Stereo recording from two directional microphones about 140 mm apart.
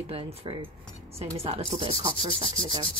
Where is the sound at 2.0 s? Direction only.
30° right (ahead or behind).